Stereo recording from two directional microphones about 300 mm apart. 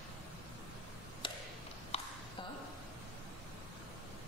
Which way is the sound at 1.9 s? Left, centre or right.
Centre.